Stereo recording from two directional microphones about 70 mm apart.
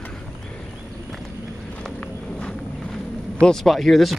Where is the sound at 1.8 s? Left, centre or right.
Centre.